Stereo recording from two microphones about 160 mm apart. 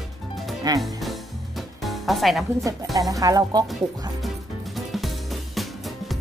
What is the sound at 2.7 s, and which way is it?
Speech, 20° right (ahead or behind).